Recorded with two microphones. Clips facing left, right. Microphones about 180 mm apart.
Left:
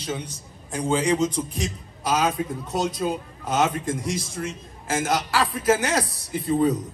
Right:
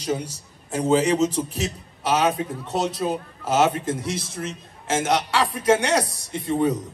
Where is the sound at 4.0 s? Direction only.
Centre (ahead or behind).